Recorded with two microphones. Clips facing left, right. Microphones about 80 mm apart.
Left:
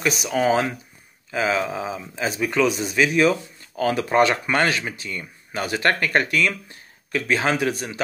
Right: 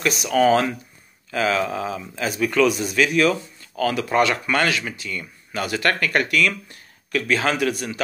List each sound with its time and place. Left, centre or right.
0.0 s speech: centre
0.3 s speech: centre